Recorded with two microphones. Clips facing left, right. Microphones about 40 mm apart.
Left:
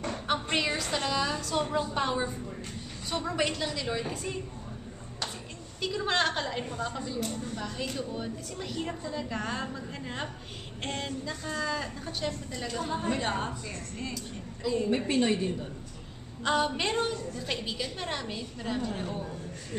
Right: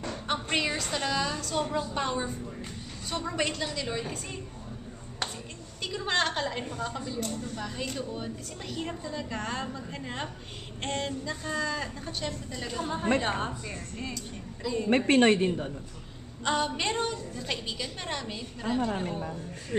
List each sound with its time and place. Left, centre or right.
0.3 s a sound: centre
0.8 s a woman's voice: centre
5.8 s a woman's voice: centre
14.9 s a woman's voice: right
16.4 s a woman's voice: centre